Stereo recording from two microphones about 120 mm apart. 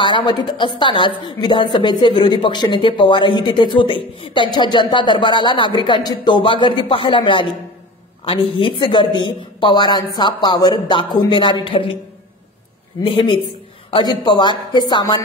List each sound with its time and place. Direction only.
0.0 s a woman's voice: 40° left (ahead or behind)
13.0 s a woman's voice: 45° left (ahead or behind)